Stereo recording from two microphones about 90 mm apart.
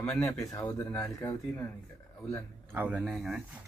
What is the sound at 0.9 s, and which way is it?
Speech, 25° left (ahead or behind).